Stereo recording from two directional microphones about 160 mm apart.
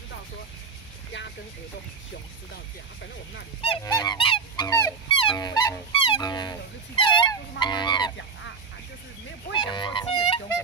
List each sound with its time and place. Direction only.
2.5 s speech: 90° left
3.8 s goose: 25° left (ahead or behind)
4.6 s a sound: 15° left (ahead or behind)
5.0 s speech: 30° left (ahead or behind)
5.9 s music: 35° left (ahead or behind)
7.0 s goose: 30° left (ahead or behind)
9.6 s music: 30° left (ahead or behind)